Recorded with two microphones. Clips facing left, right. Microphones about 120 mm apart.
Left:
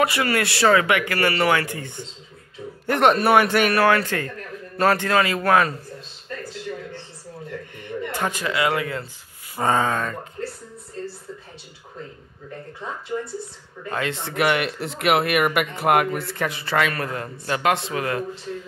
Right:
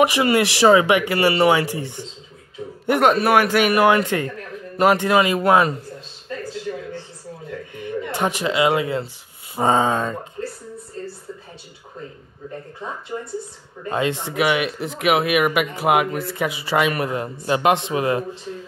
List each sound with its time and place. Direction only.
0.0 s speech: 20° right (ahead or behind)
2.9 s speech: 5° right (ahead or behind); by 5.8 s 20° right (ahead or behind)
8.1 s speech: 20° right (ahead or behind)
13.1 s speech: 15° right (ahead or behind)
14.3 s speech: 5° right (ahead or behind); by 18.2 s 20° right (ahead or behind)